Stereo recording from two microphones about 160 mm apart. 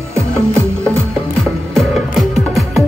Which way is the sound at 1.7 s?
Centre (ahead or behind).